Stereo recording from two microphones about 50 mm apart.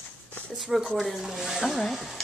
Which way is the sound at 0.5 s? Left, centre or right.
Centre.